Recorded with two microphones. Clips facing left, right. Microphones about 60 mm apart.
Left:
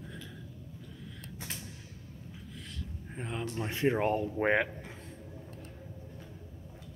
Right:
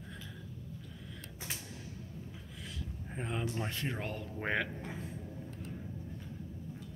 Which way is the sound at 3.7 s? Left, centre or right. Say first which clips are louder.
Left 10 dB; left.